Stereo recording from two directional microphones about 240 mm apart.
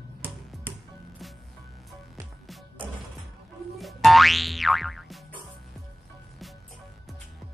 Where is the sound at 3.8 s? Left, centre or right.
Centre.